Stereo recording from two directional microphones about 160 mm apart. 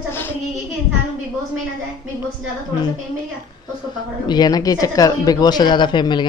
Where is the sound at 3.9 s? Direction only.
25° left (ahead or behind).